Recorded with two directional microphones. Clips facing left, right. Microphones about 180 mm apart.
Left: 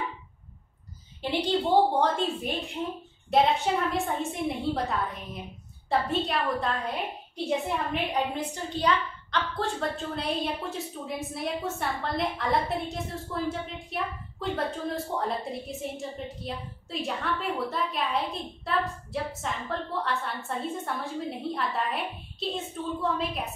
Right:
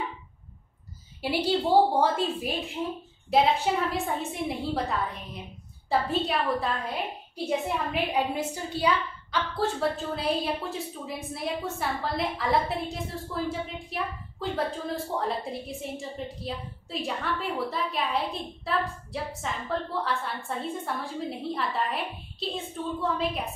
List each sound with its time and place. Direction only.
1.2 s a woman's voice: 10° right (ahead or behind)